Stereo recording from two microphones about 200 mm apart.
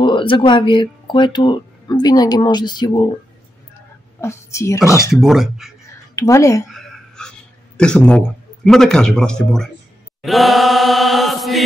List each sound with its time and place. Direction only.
0.0 s speech: 25° left (ahead or behind)
4.2 s a woman's voice: 15° left (ahead or behind)
5.1 s chant: centre (ahead or behind)
6.1 s a woman's voice: 15° left (ahead or behind)
6.7 s a sound: 5° left (ahead or behind)
10.2 s chant: centre (ahead or behind)